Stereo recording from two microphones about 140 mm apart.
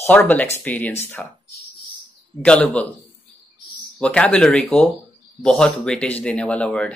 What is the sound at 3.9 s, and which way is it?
Speech, 10° left (ahead or behind).